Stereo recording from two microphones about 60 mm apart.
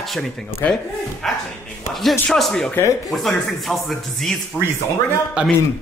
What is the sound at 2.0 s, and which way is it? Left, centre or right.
Speech, centre.